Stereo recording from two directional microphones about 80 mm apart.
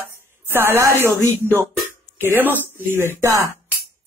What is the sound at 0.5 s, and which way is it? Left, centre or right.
Speech, right.